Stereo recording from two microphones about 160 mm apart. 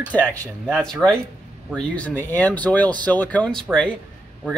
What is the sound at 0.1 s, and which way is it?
Speech, 10° left (ahead or behind).